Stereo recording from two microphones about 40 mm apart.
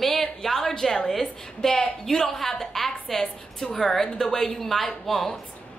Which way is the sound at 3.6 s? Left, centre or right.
Centre.